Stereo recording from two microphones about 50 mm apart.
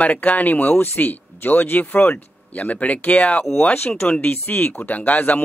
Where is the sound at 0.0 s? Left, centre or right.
Left.